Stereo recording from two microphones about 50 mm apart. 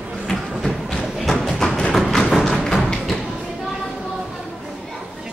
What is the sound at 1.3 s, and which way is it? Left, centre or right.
Thump, centre.